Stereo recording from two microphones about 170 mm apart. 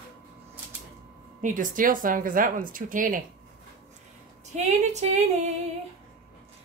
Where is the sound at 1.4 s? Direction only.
50° right (ahead or behind).